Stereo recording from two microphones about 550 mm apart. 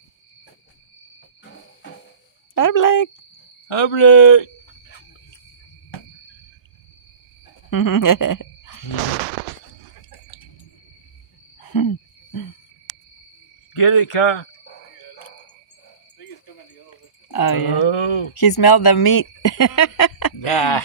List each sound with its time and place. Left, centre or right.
2.5 s speech: left
3.6 s a man's voice: left
7.7 s a sound: left
10.0 s a sound: left
11.5 s hoot: left
13.7 s a man's voice: left
16.4 s a sound: left
17.6 s a man's voice: left
18.3 s speech: left
20.3 s a man's voice: left